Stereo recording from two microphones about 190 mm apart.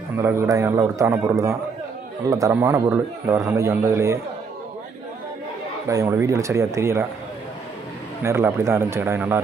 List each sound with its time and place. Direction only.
0.1 s a man's voice: 15° right (ahead or behind)
5.9 s a man's voice: 15° right (ahead or behind)
8.2 s a man's voice: 15° right (ahead or behind)